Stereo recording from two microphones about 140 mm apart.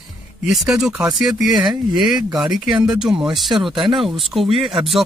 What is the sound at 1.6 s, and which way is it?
Speech, 30° right (ahead or behind).